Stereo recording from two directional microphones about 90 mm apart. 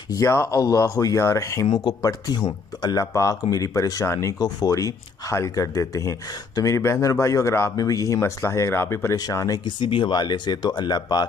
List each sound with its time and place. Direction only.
0.1 s speech: 35° left (ahead or behind)
2.0 s speech: 45° left (ahead or behind)
4.4 s speech: 45° left (ahead or behind); by 7.7 s 30° left (ahead or behind)
7.7 s speech: 40° left (ahead or behind)
8.2 s speech: 30° left (ahead or behind)
9.1 s speech: 40° left (ahead or behind)
9.8 s speech: 65° left (ahead or behind); by 11.2 s 50° left (ahead or behind)